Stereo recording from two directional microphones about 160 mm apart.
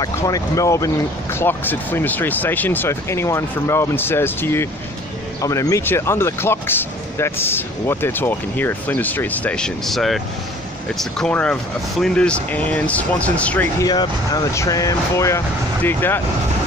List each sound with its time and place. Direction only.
0.0 s speech: 20° left (ahead or behind)
13.7 s speech: 25° left (ahead or behind)